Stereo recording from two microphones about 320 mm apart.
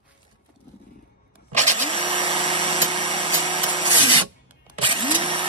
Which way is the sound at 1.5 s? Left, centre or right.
Right.